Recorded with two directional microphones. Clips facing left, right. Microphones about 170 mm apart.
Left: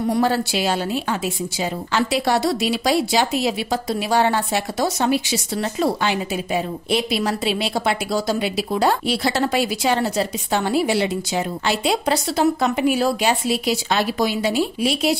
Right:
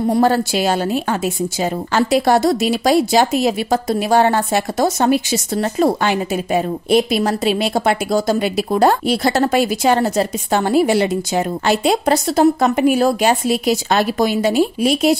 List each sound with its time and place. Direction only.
0.2 s a woman's voice: 45° right (ahead or behind)